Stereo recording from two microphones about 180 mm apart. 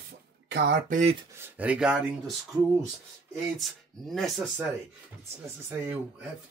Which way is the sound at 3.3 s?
Centre (ahead or behind).